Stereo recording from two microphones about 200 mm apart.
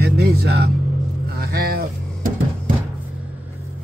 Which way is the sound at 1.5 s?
50° right (ahead or behind).